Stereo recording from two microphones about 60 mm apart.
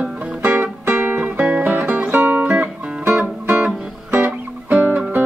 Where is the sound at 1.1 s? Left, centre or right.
Right.